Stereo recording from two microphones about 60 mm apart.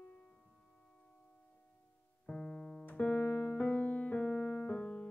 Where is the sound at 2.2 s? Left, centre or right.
Centre.